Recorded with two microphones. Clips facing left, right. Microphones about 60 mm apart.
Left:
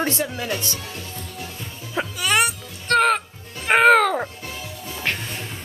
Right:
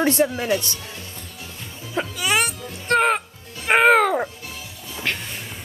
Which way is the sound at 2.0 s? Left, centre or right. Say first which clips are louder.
Even; centre.